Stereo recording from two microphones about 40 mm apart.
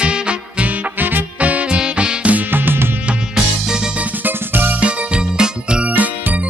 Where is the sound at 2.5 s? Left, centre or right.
Right.